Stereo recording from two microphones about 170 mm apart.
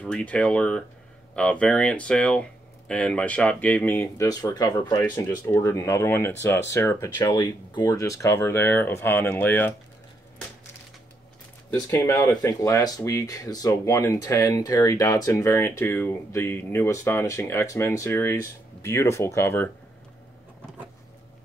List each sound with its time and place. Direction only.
0.0 s speech: 5° left (ahead or behind)
11.9 s speech: 20° left (ahead or behind)